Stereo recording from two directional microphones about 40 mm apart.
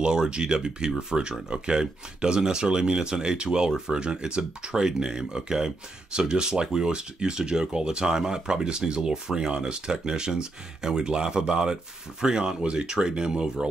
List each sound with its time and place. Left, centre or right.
0.0 s speech: right